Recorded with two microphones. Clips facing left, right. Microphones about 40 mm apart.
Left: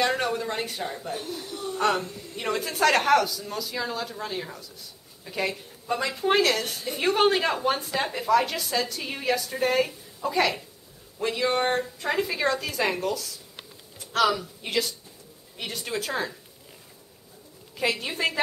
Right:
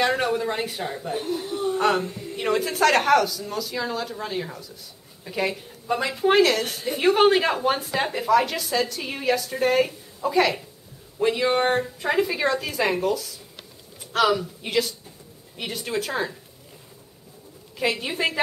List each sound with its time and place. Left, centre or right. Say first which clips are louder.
0.0 s a woman's voice: right 3 dB; centre
1.2 s speech: right 8 dB; right
1.8 s a woman's voice: right 1 dB; centre
17.7 s a woman's voice: right 2 dB; centre